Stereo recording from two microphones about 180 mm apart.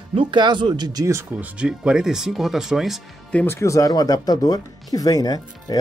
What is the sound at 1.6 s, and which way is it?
Speech, 5° right (ahead or behind).